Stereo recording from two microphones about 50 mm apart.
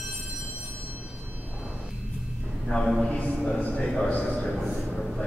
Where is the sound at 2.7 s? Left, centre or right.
Left.